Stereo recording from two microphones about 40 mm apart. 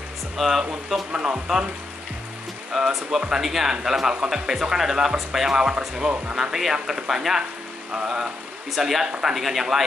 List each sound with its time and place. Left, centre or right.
0.4 s speech: centre
2.7 s speech: centre
7.9 s speech: right
8.7 s speech: centre